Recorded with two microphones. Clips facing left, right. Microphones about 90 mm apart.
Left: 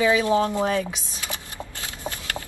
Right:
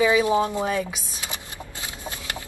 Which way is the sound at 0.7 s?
15° right (ahead or behind).